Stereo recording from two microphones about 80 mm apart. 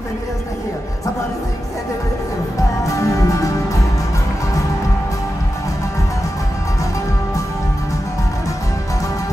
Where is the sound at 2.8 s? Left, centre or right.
Left.